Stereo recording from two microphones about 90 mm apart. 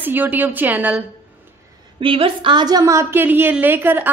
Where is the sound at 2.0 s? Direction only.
85° right; by 2.8 s 60° right (ahead or behind).